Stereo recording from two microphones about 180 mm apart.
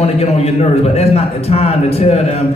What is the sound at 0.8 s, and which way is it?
A man's voice, 35° left (ahead or behind).